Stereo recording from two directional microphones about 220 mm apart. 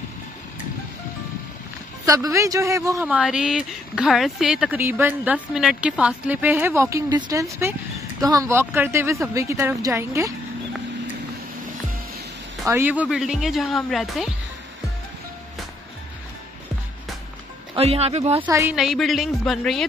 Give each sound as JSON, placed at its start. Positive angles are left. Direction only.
{"t": 2.0, "sound": "a man's voice", "side_deg": -15}
{"t": 12.6, "sound": "a woman's voice", "side_deg": -10}
{"t": 17.7, "sound": "speech", "side_deg": -30}
{"t": 18.4, "sound": "a woman's voice", "side_deg": -10}